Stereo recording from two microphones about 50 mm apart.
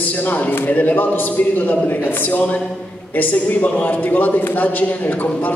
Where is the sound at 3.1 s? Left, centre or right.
Left.